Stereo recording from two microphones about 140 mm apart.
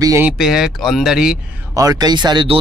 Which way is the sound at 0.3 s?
5° right (ahead or behind).